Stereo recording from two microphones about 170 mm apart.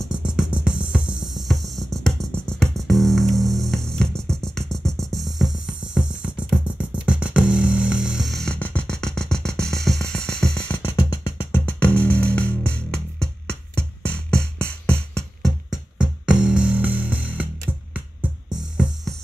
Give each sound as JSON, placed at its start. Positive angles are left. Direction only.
{"t": 0.2, "sound": "music", "side_deg": -5}
{"t": 10.8, "sound": "music", "side_deg": 25}
{"t": 11.5, "sound": "music", "side_deg": 10}